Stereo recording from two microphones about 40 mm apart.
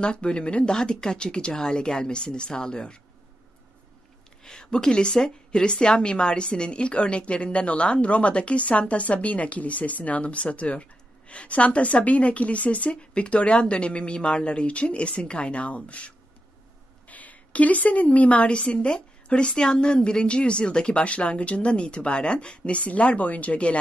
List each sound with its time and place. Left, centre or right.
0.0 s a woman's voice: left
4.4 s a woman's voice: centre
17.1 s a woman's voice: left